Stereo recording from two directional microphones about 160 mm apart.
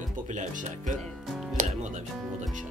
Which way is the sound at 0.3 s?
50° right (ahead or behind).